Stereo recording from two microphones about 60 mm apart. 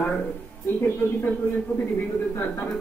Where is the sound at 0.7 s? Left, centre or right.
Left.